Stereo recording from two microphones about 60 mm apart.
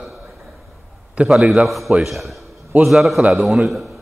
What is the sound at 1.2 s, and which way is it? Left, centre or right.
A man's voice, centre.